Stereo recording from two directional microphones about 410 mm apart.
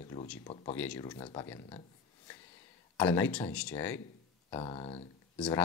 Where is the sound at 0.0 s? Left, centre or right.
Centre.